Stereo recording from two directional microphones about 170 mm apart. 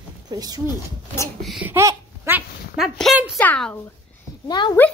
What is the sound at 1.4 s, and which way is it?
Speech, centre (ahead or behind).